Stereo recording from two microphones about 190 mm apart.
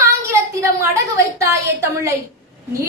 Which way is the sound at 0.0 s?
15° right (ahead or behind).